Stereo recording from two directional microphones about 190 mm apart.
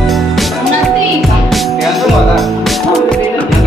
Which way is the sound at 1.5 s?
Centre (ahead or behind).